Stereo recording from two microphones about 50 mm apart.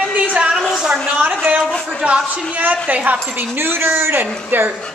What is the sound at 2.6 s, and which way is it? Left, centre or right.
Speech, right.